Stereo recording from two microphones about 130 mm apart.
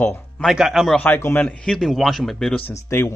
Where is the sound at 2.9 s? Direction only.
20° left (ahead or behind).